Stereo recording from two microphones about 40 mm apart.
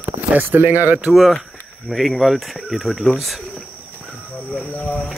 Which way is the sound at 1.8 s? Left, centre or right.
Centre.